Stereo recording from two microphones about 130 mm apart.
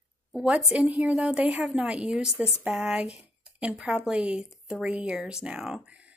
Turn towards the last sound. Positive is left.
turn(degrees=-10)  # may be behind; listen again after turning